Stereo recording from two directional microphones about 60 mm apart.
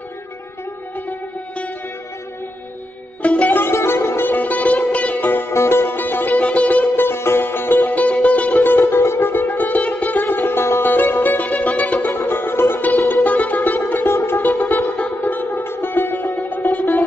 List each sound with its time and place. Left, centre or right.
3.2 s music: left
3.5 s music: left
4.3 s music: left
7.1 s music: left
10.2 s music: left
12.1 s music: left
13.2 s music: left